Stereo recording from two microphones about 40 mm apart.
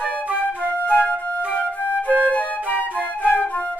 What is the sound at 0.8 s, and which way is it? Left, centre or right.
Flute, left.